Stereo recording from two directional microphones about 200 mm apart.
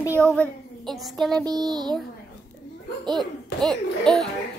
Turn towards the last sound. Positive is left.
turn(degrees=0)  # may be behind; listen again after turning